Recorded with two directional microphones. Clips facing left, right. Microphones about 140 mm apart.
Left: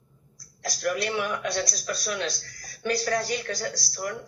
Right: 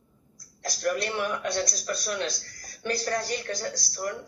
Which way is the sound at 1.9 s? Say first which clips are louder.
Even; 45° right (ahead or behind).